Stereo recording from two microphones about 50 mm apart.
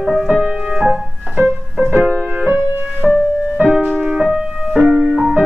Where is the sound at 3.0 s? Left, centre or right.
Right.